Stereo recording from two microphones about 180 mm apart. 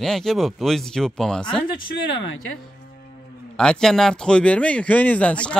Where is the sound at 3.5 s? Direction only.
5° left (ahead or behind).